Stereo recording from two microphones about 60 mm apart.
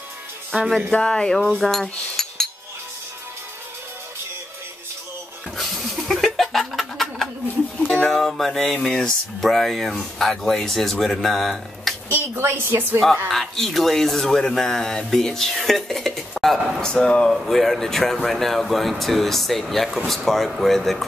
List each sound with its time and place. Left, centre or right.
0.7 s speech: centre
0.9 s cutlery: centre
5.6 s a sound: centre
7.9 s speech: centre
12.1 s a woman's voice: right
13.3 s speech: centre
16.8 s speech: centre